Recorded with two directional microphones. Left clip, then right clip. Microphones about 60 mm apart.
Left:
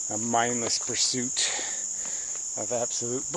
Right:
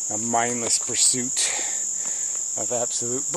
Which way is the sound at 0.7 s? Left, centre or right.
Centre.